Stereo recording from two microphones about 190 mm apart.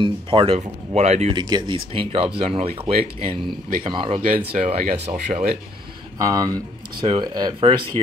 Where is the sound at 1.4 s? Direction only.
25° right (ahead or behind).